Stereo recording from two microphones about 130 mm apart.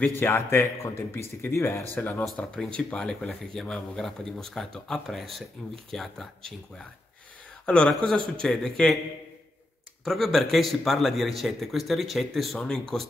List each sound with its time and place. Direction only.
0.0 s speech: 15° left (ahead or behind)
7.6 s speech: 5° left (ahead or behind)
10.0 s speech: centre (ahead or behind)